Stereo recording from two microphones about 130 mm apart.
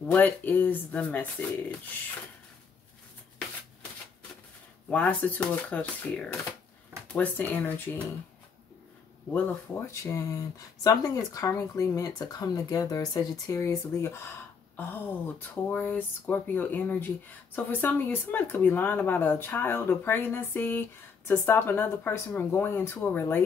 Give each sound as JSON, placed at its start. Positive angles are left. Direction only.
{"t": 0.0, "sound": "speech", "side_deg": 15}
{"t": 4.8, "sound": "speech", "side_deg": 10}
{"t": 9.3, "sound": "speech", "side_deg": 15}